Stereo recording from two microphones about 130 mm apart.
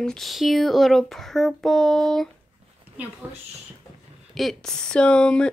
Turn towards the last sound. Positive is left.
turn(degrees=5)  # may be behind; listen again after turning